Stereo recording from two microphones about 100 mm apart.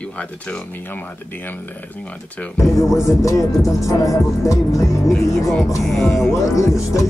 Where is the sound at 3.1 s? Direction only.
30° left (ahead or behind).